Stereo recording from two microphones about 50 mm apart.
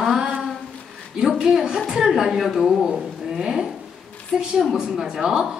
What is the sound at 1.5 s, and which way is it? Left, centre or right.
A woman's voice, centre.